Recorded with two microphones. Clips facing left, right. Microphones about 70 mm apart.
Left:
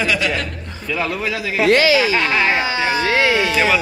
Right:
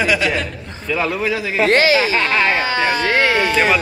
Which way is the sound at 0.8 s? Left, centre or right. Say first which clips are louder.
Right 2 dB; right.